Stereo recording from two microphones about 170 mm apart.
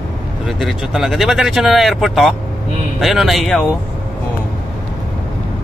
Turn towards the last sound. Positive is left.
turn(degrees=5)  # may be behind; listen again after turning